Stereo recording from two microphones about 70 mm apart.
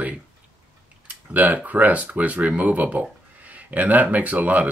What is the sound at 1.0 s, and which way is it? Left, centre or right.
Speech, right.